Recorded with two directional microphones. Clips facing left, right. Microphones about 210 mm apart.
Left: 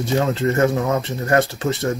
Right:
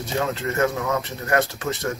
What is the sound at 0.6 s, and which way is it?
Speech, 30° left (ahead or behind).